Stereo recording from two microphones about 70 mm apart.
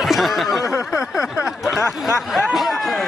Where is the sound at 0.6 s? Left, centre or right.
Left.